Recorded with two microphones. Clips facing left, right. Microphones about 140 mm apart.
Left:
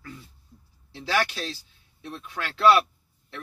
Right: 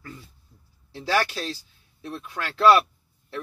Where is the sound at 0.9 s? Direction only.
40° right (ahead or behind).